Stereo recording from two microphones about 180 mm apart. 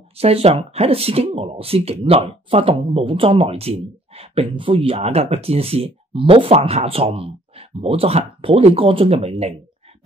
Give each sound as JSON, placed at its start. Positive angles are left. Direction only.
{"t": 0.2, "sound": "speech", "side_deg": -35}